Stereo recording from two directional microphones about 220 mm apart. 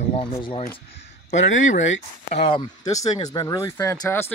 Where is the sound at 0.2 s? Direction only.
25° left (ahead or behind).